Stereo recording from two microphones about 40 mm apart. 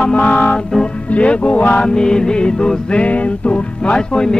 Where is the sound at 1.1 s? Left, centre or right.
Left.